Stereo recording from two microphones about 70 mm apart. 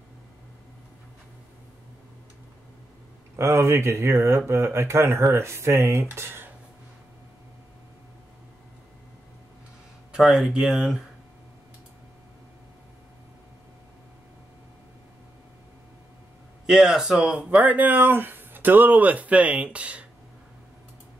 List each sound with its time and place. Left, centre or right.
3.3 s speech: right
10.1 s speech: centre
16.6 s speech: centre